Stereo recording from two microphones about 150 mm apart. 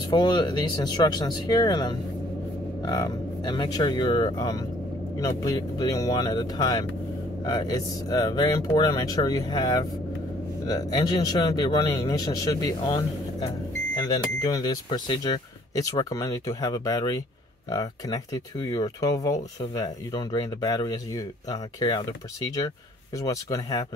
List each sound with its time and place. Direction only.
0.1 s speech: 30° left (ahead or behind)
23.1 s speech: 20° left (ahead or behind)